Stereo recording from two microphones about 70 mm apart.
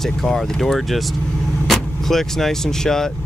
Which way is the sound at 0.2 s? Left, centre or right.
Centre.